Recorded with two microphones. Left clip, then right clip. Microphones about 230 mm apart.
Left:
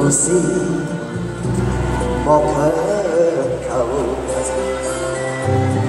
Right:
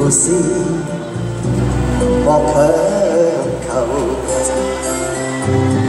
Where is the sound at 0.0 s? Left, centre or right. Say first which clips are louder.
Right 1 dB; right.